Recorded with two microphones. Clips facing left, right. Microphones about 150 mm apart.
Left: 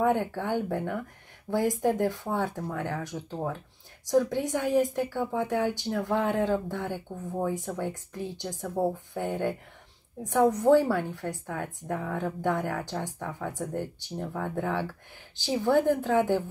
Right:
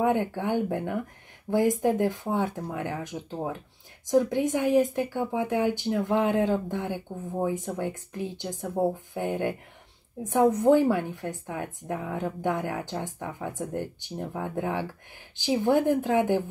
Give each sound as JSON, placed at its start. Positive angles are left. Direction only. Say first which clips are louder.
{"t": 0.0, "sound": "speech", "louder": "right 1 dB", "side_deg": -15}
{"t": 10.6, "sound": "speech", "louder": "right 1 dB", "side_deg": -20}